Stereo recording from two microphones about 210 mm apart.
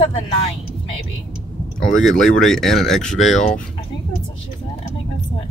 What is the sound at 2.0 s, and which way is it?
Speech, centre (ahead or behind).